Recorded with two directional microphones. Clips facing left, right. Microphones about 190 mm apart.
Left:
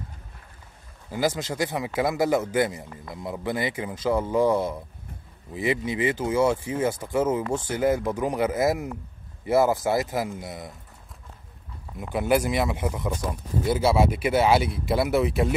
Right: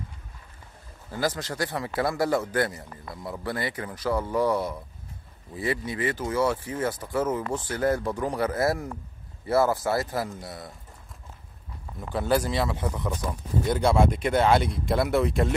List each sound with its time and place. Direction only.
1.1 s a man's voice: 10° left (ahead or behind)
12.0 s a man's voice: 15° left (ahead or behind)
13.7 s speech: 5° left (ahead or behind)